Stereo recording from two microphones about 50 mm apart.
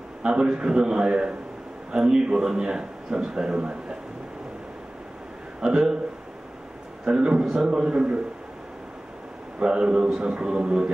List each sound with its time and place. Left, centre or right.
0.2 s a man's voice: right
5.6 s a man's voice: centre
7.1 s a man's voice: centre
9.6 s a man's voice: centre